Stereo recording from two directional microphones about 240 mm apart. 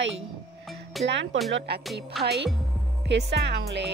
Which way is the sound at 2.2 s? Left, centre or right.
Right.